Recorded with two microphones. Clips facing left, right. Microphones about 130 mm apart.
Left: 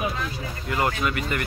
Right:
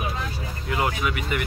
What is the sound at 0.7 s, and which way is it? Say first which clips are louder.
Speech: left 1 dB; 10° right (ahead or behind).